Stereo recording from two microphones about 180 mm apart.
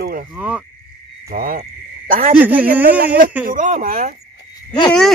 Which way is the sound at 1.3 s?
50° right (ahead or behind).